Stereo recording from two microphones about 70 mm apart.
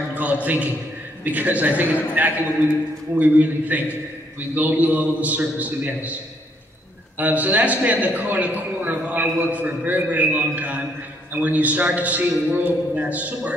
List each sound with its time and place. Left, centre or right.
0.1 s a sound: right
1.2 s a man's voice: right
7.2 s a man's voice: right